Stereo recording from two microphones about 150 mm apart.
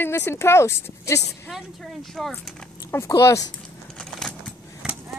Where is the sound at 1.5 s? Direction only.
Centre (ahead or behind).